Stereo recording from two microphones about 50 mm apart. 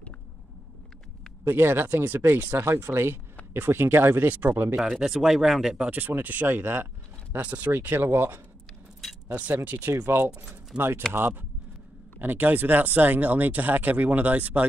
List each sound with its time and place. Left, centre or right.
1.4 s speech: right
2.8 s speech: right
4.7 s speech: centre
5.0 s speech: centre
5.9 s speech: right
7.7 s speech: right
9.3 s speech: right
10.0 s speech: right
10.7 s speech: centre
12.2 s speech: right